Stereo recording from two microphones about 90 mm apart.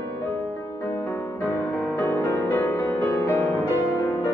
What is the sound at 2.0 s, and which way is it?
Music, 20° left (ahead or behind).